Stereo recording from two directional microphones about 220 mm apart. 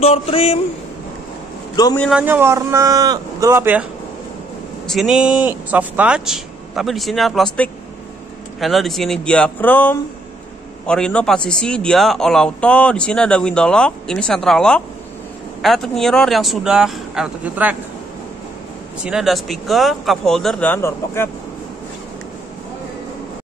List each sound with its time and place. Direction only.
0.0 s a man's voice: 25° left (ahead or behind)
2.0 s a man's voice: centre (ahead or behind)
4.8 s a man's voice: centre (ahead or behind)
8.5 s a man's voice: centre (ahead or behind)
19.0 s a man's voice: centre (ahead or behind)